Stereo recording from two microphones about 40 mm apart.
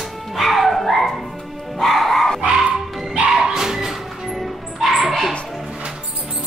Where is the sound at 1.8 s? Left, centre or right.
Centre.